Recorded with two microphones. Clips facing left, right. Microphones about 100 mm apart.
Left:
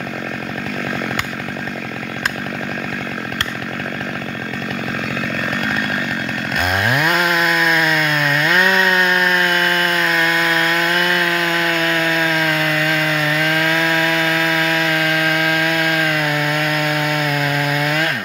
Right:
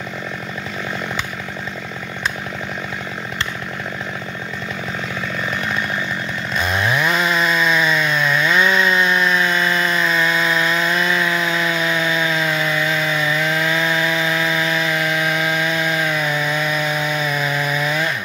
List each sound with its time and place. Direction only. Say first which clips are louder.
6.6 s chainsaw: left 1 dB; 60° left (ahead or behind)